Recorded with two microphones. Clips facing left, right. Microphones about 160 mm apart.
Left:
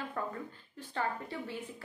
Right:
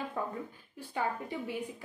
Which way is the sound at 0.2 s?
10° right (ahead or behind).